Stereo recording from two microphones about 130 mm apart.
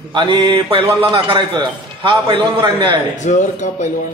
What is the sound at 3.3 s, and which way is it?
Speech, 65° left (ahead or behind).